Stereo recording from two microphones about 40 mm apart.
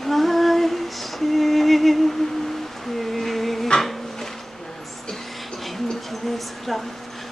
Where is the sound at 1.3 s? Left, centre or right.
Centre.